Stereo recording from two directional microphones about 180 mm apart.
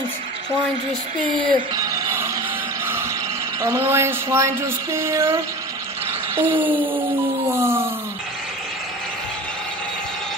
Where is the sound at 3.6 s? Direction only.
15° right (ahead or behind).